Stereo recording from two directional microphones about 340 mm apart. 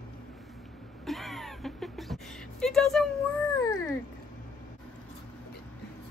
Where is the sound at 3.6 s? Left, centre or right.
Centre.